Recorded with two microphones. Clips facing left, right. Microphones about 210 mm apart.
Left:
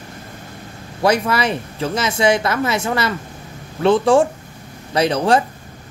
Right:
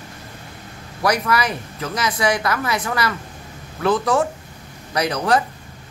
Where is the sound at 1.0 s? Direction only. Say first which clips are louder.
Left 3 dB; 25° left (ahead or behind).